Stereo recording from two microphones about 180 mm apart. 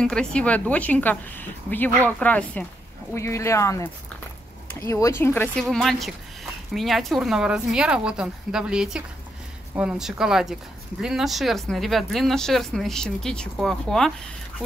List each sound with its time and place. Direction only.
0.0 s a woman's voice: 5° left (ahead or behind)